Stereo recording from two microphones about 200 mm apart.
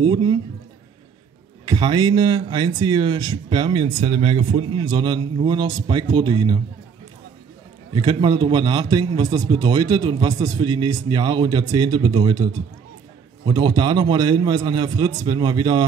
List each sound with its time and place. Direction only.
0.0 s speech: 20° right (ahead or behind)
1.7 s speech: 20° right (ahead or behind)
7.9 s speech: 20° right (ahead or behind)